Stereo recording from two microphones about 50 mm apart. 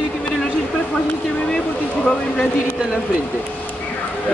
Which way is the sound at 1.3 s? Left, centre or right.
Left.